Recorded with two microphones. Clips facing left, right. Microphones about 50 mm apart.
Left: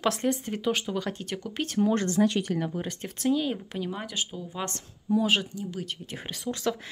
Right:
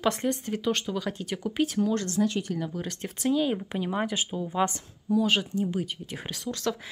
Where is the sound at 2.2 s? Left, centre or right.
Left.